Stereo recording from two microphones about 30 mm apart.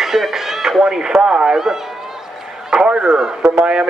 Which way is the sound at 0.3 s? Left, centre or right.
Centre.